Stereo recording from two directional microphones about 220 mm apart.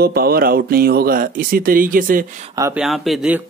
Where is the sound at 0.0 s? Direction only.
45° right (ahead or behind).